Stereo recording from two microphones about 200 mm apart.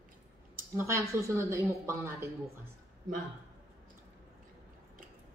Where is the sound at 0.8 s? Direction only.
15° right (ahead or behind).